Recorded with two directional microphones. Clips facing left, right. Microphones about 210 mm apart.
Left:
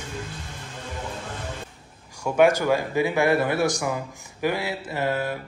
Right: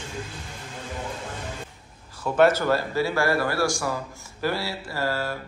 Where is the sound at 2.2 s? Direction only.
15° left (ahead or behind).